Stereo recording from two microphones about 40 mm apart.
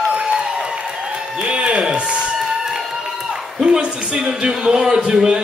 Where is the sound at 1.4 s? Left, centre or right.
Right.